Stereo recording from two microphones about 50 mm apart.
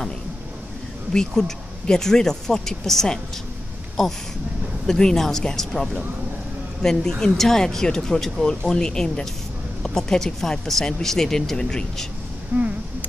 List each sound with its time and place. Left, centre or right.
1.1 s speech: centre
4.8 s speech: centre
12.5 s a sound: right